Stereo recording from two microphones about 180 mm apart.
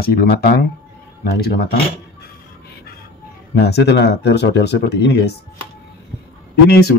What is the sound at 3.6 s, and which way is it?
Speech, 65° left (ahead or behind).